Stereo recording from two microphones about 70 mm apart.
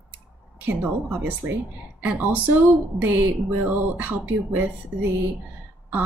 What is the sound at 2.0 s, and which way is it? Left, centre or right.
A woman's voice, right.